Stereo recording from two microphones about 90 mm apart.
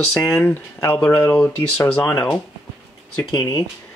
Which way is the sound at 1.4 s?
30° left (ahead or behind).